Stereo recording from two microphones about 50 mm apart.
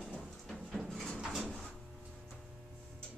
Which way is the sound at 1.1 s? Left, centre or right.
Centre.